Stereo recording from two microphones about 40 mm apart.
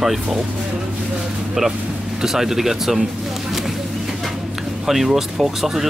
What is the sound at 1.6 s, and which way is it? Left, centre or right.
Speech, centre.